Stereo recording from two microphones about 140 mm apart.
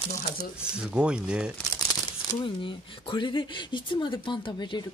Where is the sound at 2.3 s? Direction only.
35° left (ahead or behind).